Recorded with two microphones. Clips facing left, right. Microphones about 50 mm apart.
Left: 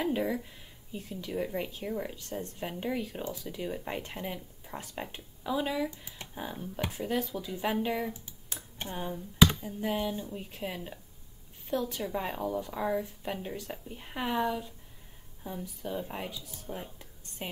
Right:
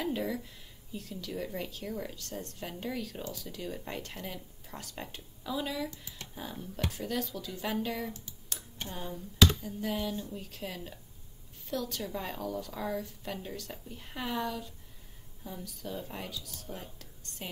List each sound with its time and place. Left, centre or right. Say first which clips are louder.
0.0 s speech: left 3 dB; centre